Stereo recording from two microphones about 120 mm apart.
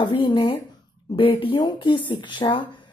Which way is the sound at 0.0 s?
40° left (ahead or behind).